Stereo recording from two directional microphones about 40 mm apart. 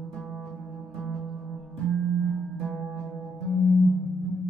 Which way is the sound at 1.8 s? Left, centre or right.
Left.